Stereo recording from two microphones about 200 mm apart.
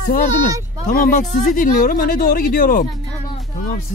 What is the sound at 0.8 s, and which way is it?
Speech, 40° left (ahead or behind).